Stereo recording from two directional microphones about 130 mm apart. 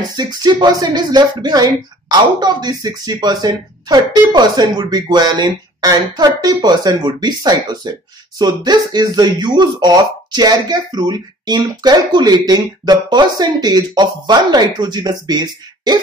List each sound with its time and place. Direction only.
0.1 s speech: 35° right (ahead or behind)